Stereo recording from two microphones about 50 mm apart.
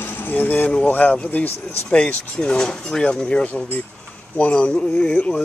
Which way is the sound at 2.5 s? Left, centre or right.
Centre.